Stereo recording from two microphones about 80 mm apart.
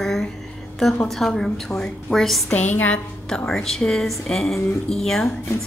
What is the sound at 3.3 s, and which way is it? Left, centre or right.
A woman's voice, centre.